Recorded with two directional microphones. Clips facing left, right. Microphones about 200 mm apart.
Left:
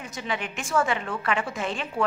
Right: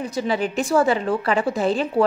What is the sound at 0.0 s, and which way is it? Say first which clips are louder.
A woman's voice: right 9 dB; 35° right (ahead or behind).